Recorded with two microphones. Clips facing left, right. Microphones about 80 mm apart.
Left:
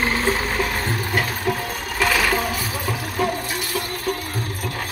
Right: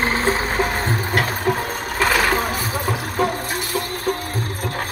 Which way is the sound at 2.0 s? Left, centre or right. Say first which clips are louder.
Right 2 dB; right.